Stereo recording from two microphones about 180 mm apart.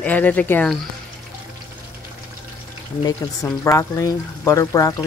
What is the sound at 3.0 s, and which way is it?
Speech, 20° left (ahead or behind).